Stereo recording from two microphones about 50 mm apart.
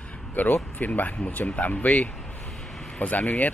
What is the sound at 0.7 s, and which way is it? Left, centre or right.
Speech, left.